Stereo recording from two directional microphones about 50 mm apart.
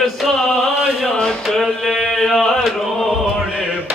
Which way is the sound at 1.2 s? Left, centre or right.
Centre.